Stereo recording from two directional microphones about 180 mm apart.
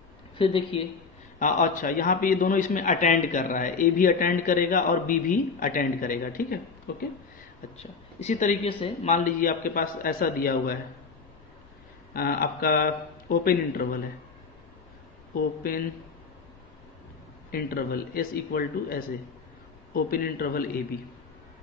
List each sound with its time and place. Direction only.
0.4 s speech: 30° left (ahead or behind)
1.4 s a man's voice: 45° left (ahead or behind)
7.7 s speech: 35° left (ahead or behind)
8.6 s a man's voice: 30° left (ahead or behind); by 10.8 s 55° left (ahead or behind)
12.1 s a man's voice: 55° left (ahead or behind)
15.3 s a man's voice: 55° left (ahead or behind)
17.5 s a man's voice: 55° left (ahead or behind)